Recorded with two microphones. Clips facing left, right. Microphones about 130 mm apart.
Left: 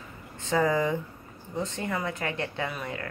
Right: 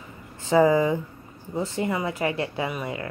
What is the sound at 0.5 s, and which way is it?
Speech, 20° right (ahead or behind).